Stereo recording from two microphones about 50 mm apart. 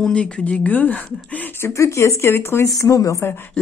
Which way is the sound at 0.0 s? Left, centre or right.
Centre.